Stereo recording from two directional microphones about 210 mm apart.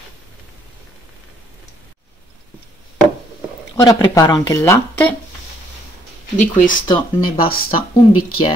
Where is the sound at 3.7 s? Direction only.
20° left (ahead or behind).